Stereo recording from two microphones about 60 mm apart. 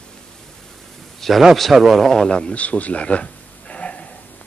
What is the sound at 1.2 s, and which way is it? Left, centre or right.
A man's voice, centre.